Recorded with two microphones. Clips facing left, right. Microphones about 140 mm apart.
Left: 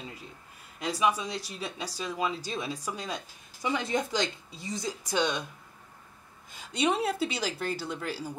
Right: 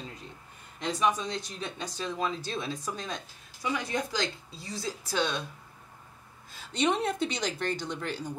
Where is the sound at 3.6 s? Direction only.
20° left (ahead or behind).